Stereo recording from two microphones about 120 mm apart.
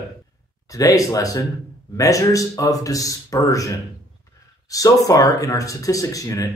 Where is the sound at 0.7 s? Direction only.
30° left (ahead or behind).